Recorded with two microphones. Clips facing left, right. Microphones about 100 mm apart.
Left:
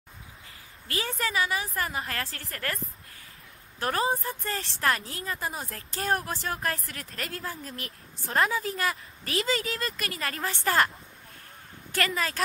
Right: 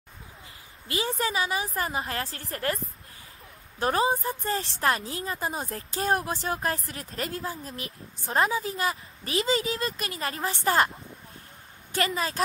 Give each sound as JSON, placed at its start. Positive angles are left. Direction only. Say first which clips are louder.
{"t": 0.8, "sound": "a woman's voice", "louder": "right 3 dB", "side_deg": -20}
{"t": 3.8, "sound": "a woman's voice", "louder": "right 3 dB", "side_deg": -20}
{"t": 11.9, "sound": "a woman's voice", "louder": "right 1 dB", "side_deg": -20}